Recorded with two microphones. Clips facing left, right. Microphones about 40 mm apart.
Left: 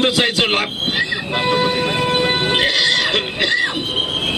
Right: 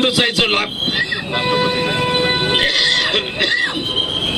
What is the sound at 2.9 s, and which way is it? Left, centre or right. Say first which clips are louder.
Music: even; centre.